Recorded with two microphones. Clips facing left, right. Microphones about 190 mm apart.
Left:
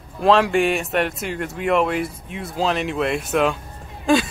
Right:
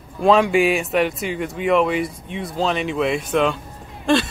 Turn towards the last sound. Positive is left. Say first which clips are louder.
# even
turn(degrees=5)  # may be behind; listen again after turning